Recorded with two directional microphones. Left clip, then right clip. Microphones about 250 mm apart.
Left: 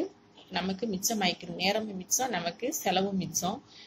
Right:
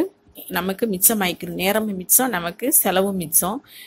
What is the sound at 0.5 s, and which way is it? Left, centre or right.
Speech, right.